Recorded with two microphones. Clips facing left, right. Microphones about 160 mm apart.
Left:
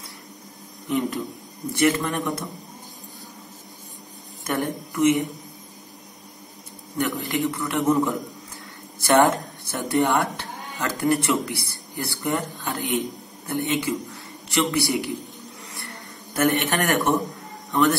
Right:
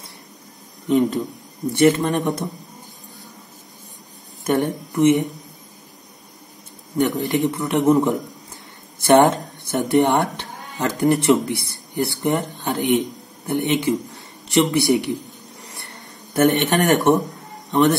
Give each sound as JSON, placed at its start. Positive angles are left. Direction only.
{"t": 0.8, "sound": "speech", "side_deg": -20}
{"t": 4.5, "sound": "speech", "side_deg": -20}
{"t": 7.0, "sound": "speech", "side_deg": -20}
{"t": 15.8, "sound": "a sound", "side_deg": -20}
{"t": 17.6, "sound": "speech", "side_deg": -20}